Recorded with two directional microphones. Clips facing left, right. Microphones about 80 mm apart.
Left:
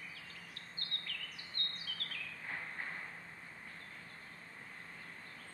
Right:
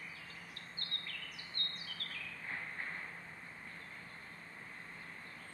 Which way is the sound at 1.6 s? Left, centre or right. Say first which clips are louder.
Left 1 dB; right.